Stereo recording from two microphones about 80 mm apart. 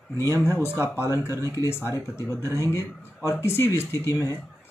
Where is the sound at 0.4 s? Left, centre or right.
Left.